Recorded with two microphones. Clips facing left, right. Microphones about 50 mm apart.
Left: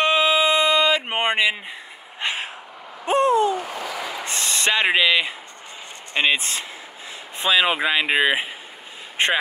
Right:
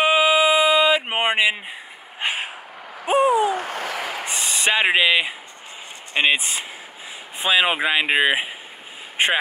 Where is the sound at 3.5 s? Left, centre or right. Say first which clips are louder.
Right 1 dB; right.